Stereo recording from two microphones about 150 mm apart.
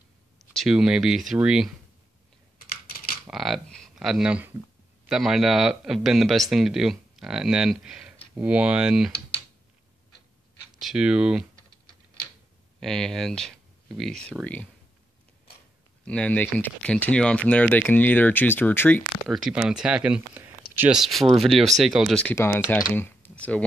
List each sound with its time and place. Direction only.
0.5 s a man's voice: centre (ahead or behind)
2.6 s typing: 90° left
3.3 s a sound: centre (ahead or behind)
5.1 s a man's voice: centre (ahead or behind)
10.8 s a man's voice: 5° right (ahead or behind)
12.8 s speech: 5° left (ahead or behind)
16.1 s speech: 10° left (ahead or behind)
19.2 s speech: centre (ahead or behind)
21.0 s a man's voice: centre (ahead or behind)
22.9 s a sound: 15° left (ahead or behind)